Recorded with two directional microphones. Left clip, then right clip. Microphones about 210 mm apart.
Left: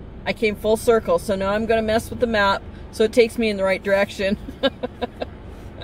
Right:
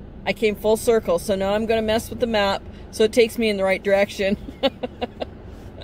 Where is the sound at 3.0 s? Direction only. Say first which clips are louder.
Even; 10° right (ahead or behind).